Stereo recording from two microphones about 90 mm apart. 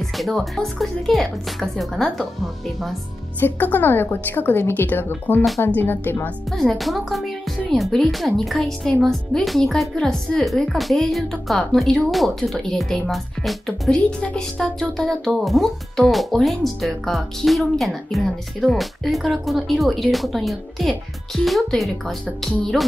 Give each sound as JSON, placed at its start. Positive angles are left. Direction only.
{"t": 0.2, "sound": "speech", "side_deg": 5}
{"t": 3.3, "sound": "a woman's voice", "side_deg": 20}
{"t": 6.5, "sound": "speech", "side_deg": 5}